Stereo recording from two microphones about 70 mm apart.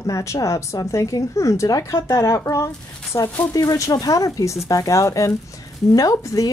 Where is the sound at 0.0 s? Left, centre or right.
Left.